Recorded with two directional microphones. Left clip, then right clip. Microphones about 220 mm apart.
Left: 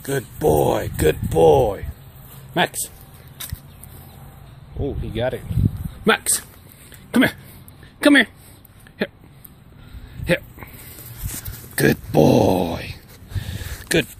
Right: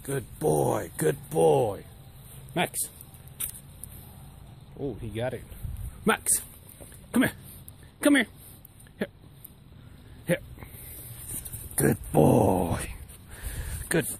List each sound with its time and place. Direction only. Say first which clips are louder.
0.0 s speech: left 8 dB; 5° left (ahead or behind)
4.8 s speech: left 8 dB; centre (ahead or behind)
10.2 s a sound: left 8 dB; centre (ahead or behind)
11.7 s speech: left 7 dB; 5° left (ahead or behind)